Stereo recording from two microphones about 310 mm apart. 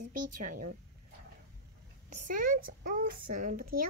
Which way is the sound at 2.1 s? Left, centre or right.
Right.